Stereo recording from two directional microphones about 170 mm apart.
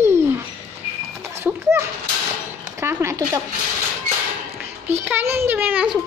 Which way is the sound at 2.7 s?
15° right (ahead or behind).